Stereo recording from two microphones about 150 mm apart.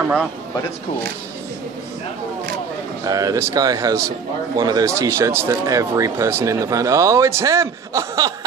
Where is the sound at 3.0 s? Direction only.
25° right (ahead or behind).